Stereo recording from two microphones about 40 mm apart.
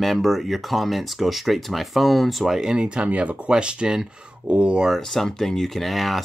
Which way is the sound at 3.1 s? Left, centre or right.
Right.